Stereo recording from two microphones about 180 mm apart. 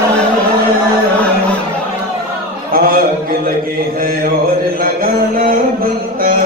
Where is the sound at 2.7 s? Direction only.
55° right (ahead or behind).